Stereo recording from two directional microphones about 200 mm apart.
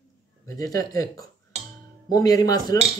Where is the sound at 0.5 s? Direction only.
15° left (ahead or behind).